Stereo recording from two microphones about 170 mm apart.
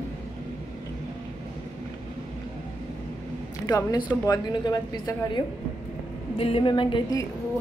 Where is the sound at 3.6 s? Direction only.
20° left (ahead or behind).